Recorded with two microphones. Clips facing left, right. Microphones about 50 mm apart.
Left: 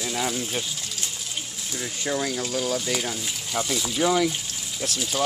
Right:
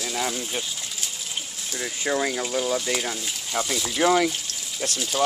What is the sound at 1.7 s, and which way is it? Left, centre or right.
Speech, centre.